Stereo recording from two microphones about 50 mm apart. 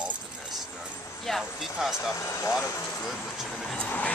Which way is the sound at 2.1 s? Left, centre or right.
Left.